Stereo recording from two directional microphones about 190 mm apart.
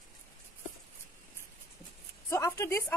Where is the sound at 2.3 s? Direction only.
15° left (ahead or behind).